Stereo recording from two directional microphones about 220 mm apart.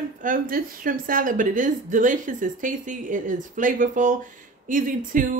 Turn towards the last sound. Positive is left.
turn(degrees=-35)  # may be behind; listen again after turning